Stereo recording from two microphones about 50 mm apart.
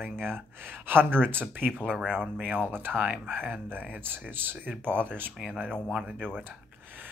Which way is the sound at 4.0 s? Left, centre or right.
Right.